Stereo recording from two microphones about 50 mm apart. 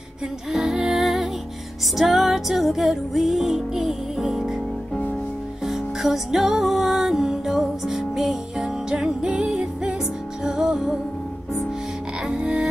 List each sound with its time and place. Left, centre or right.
0.5 s music: centre
5.7 s music: centre
12.3 s music: right